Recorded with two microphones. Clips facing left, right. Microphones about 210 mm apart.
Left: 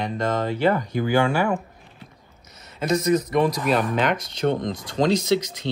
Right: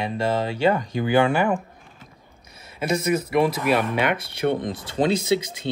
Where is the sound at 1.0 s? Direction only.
20° right (ahead or behind).